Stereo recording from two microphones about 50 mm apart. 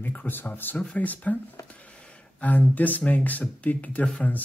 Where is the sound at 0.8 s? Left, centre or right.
Left.